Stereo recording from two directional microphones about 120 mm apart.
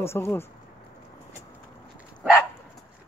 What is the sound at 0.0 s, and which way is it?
Speech, 20° left (ahead or behind).